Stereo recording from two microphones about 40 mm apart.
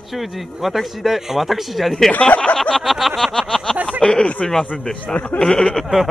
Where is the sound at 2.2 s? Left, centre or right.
Left.